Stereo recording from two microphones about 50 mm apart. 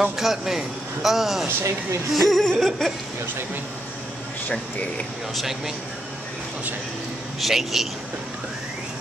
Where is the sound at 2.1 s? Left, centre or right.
Centre.